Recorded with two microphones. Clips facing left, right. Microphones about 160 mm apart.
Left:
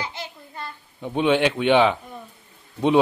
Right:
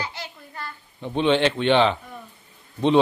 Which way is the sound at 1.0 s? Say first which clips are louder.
Even; 10° left (ahead or behind).